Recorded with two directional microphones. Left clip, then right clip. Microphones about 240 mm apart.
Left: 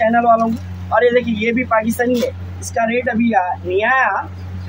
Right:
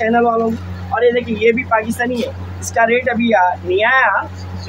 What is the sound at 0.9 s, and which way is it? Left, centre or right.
Speech, centre.